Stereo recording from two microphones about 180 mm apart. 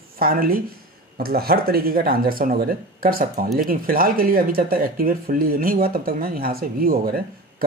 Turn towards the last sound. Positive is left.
turn(degrees=-55)  # may be behind; listen again after turning